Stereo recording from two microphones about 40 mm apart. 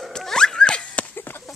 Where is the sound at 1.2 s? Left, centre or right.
Left.